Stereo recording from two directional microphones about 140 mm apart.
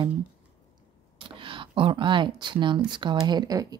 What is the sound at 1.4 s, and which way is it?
Speech, 40° right (ahead or behind).